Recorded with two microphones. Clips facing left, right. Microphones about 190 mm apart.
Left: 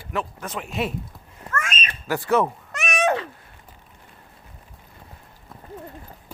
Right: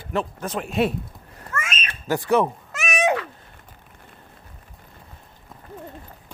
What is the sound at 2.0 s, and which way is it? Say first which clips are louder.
Speech: right 1 dB; 20° right (ahead or behind).